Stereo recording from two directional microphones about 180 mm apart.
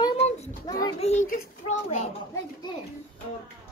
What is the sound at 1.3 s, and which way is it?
Speech, 40° left (ahead or behind).